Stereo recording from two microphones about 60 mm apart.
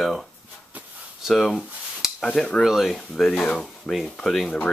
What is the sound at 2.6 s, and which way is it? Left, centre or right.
Speech, centre.